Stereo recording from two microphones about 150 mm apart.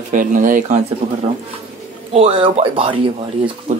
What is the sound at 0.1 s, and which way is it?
Speech, 65° right (ahead or behind).